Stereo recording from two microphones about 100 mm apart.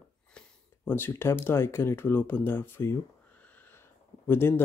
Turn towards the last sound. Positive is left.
turn(degrees=25)  # may be behind; listen again after turning